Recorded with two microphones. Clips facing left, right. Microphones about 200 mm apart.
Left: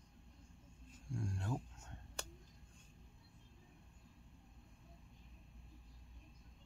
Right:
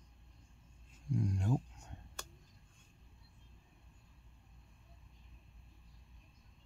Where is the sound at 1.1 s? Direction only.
15° right (ahead or behind).